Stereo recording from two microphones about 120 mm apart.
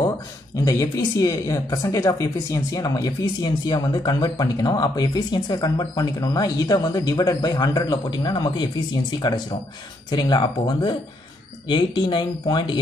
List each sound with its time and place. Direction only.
0.6 s speech: 25° left (ahead or behind)